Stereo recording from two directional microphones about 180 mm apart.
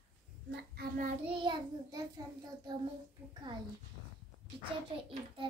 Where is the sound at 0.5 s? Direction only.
60° right (ahead or behind).